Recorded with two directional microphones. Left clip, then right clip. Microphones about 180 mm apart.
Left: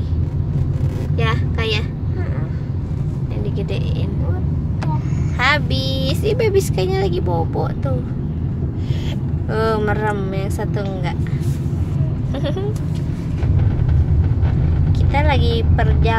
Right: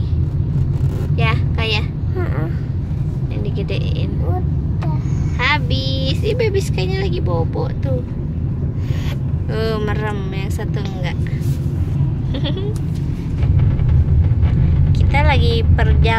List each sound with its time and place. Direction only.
1.1 s a sound: 5° left (ahead or behind)
5.4 s vehicle: 30° left (ahead or behind)
9.6 s speech: 20° left (ahead or behind)
14.9 s speech: 5° left (ahead or behind)